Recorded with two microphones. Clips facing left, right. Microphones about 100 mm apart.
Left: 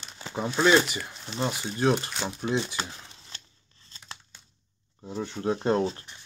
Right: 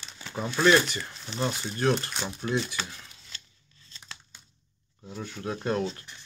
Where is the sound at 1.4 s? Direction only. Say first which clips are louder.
Left 1 dB; 15° left (ahead or behind); by 3.4 s 30° left (ahead or behind).